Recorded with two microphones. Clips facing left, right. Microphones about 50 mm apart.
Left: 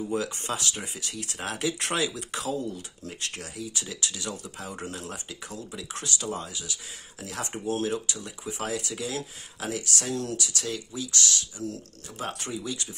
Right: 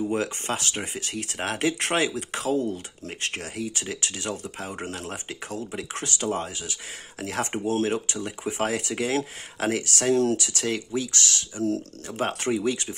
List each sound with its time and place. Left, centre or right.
0.1 s speech: right